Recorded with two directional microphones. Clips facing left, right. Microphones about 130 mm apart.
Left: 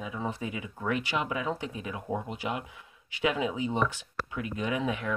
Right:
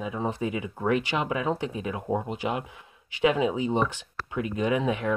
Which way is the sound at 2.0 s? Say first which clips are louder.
Right 5 dB; 25° right (ahead or behind).